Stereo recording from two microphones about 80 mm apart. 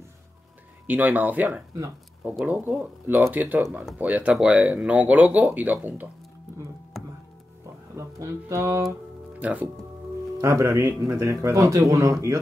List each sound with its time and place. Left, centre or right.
0.8 s speech: right
6.9 s music: centre
7.9 s speech: right
9.4 s speech: centre
10.4 s speech: right